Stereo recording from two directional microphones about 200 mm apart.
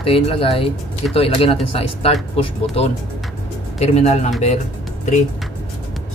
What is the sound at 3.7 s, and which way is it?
Speech, 30° left (ahead or behind).